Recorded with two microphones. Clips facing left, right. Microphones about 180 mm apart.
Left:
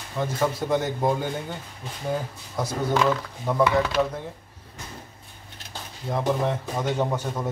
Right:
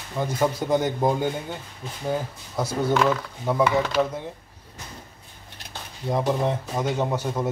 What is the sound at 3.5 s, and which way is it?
Speech, 10° right (ahead or behind).